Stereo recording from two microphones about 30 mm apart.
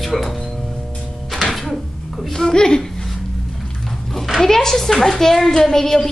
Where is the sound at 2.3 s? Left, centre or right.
Centre.